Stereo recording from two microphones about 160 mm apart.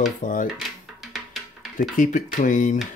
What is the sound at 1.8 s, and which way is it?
Speech, 55° left (ahead or behind).